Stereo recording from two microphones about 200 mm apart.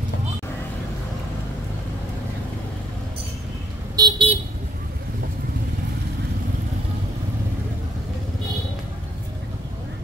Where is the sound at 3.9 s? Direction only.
20° right (ahead or behind).